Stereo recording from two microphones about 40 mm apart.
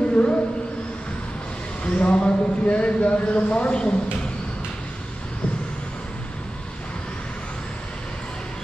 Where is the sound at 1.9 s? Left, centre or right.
Left.